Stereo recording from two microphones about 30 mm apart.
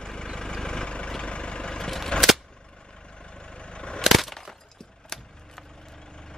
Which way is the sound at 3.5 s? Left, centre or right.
Left.